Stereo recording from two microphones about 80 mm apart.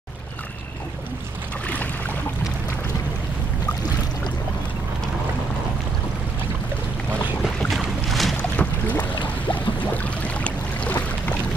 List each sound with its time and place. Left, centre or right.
7.4 s boat: centre
8.4 s boat: centre